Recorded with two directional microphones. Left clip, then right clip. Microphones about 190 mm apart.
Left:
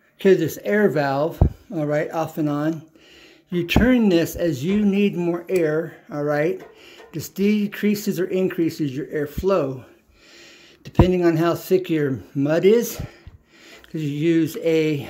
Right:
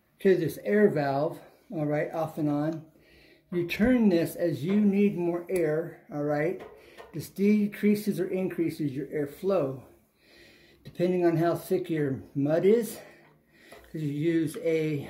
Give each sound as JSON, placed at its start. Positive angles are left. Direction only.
{"t": 0.2, "sound": "speech", "side_deg": 45}
{"t": 11.0, "sound": "speech", "side_deg": 45}